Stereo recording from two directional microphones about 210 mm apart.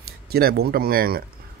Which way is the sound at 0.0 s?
45° right (ahead or behind).